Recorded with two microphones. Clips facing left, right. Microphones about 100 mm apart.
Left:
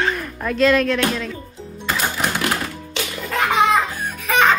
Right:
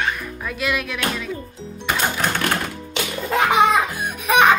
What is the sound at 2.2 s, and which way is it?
Music, 10° left (ahead or behind).